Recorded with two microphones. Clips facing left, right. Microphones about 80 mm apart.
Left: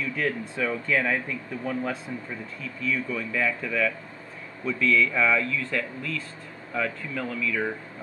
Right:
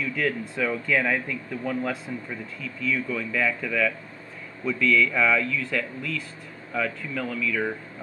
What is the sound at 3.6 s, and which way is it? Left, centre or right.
Speech, left.